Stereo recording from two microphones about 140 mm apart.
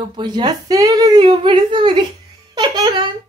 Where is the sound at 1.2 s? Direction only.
40° right (ahead or behind).